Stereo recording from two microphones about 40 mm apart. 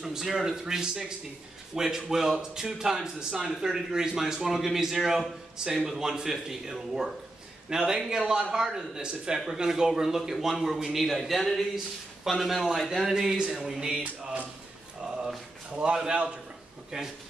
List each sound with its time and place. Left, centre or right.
0.0 s a man's voice: centre
15.7 s a man's voice: right